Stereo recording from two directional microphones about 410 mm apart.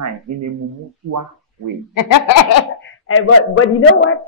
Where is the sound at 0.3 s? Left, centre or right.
Right.